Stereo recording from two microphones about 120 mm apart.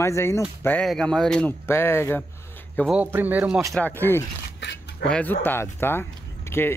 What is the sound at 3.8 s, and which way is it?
Speech, 15° left (ahead or behind).